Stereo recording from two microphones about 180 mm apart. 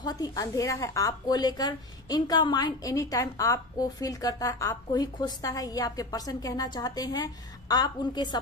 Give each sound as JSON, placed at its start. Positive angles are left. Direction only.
{"t": 0.0, "sound": "a woman's voice", "side_deg": 20}